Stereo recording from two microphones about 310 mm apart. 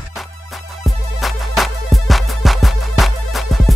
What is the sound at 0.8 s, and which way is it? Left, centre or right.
Music, centre.